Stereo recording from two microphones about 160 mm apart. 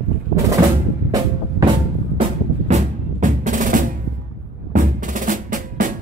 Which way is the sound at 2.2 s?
45° right (ahead or behind).